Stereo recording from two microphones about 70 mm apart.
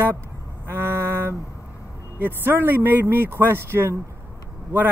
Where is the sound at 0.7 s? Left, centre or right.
Right.